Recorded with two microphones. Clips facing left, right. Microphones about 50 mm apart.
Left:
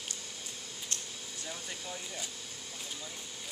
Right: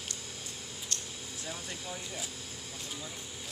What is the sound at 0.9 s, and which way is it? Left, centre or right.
Air conditioning, left.